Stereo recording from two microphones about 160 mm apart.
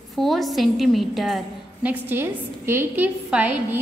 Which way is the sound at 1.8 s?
15° right (ahead or behind).